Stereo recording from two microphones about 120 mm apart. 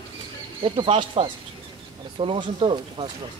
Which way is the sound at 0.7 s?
45° right (ahead or behind).